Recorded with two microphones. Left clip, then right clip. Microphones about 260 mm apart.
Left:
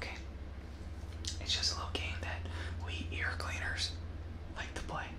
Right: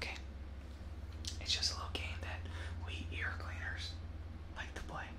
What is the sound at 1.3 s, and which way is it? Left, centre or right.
Whispering, centre.